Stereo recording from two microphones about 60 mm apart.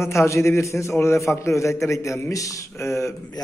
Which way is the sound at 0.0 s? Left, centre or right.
Left.